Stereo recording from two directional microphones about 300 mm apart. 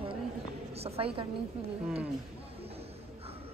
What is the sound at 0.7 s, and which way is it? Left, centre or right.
Speech, centre.